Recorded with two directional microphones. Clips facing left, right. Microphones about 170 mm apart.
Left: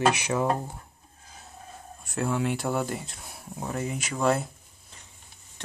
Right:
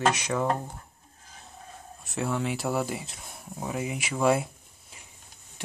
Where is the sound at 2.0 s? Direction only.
Centre (ahead or behind).